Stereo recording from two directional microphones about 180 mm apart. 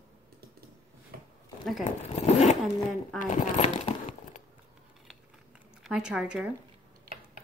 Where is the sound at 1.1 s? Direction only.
55° right (ahead or behind).